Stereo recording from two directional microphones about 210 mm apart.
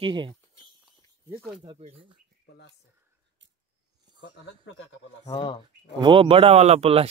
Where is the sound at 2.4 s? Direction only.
50° left (ahead or behind).